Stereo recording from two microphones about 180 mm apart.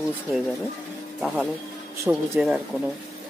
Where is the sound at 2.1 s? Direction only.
10° right (ahead or behind).